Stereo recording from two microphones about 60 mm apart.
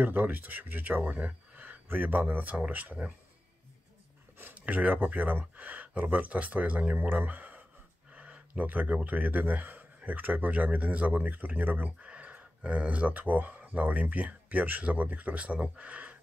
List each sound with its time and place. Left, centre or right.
0.0 s speech: right
4.4 s speech: right